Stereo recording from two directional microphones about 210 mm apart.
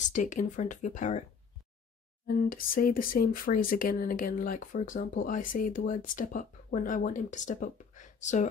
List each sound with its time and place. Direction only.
0.1 s speech: 35° left (ahead or behind)
2.2 s speech: 40° left (ahead or behind)